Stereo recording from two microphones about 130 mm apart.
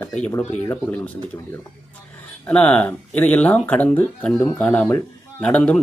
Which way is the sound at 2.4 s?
10° left (ahead or behind).